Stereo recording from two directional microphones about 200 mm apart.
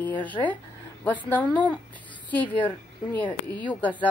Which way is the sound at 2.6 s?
10° left (ahead or behind).